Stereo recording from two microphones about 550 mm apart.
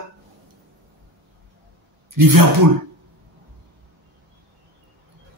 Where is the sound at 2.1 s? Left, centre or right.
Right.